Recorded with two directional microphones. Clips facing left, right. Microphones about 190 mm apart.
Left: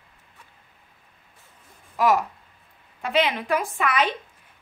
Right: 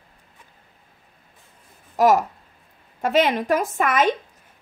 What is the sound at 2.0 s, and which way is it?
A woman's voice, 40° right (ahead or behind).